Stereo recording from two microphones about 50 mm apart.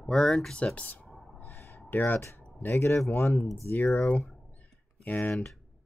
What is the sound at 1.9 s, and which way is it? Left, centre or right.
Speech, left.